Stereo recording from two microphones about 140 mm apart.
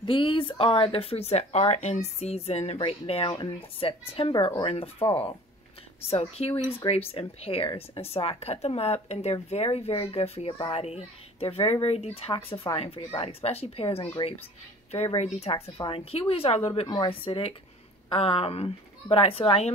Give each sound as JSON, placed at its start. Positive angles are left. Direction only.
{"t": 0.0, "sound": "speech", "side_deg": 40}
{"t": 6.0, "sound": "speech", "side_deg": 45}
{"t": 15.1, "sound": "speech", "side_deg": 50}
{"t": 16.8, "sound": "speech", "side_deg": 30}